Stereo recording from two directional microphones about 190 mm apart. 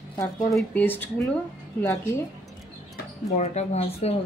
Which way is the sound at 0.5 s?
10° left (ahead or behind).